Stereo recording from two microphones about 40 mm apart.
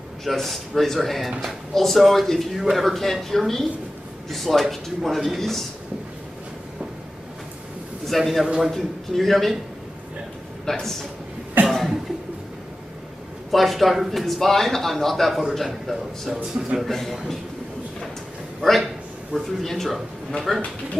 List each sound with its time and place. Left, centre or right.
0.2 s speech: centre
8.1 s speech: centre
10.6 s a man's voice: centre
11.6 s cough: right
13.5 s speech: centre
18.6 s speech: centre